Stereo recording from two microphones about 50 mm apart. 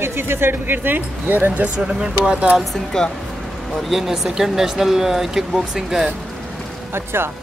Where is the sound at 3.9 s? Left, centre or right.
Centre.